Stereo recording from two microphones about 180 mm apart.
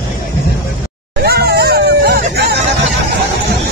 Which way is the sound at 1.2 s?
60° right (ahead or behind).